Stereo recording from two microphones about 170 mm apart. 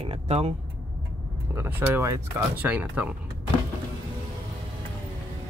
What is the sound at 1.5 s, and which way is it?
Speech, 15° right (ahead or behind).